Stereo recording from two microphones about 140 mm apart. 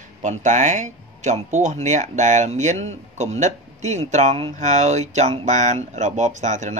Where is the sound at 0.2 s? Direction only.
60° right (ahead or behind).